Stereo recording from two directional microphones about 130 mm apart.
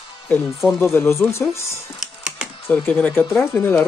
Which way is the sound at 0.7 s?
15° left (ahead or behind).